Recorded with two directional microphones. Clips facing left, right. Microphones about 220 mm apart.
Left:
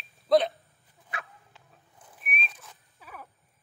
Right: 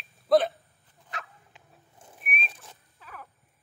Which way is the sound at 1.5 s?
25° right (ahead or behind).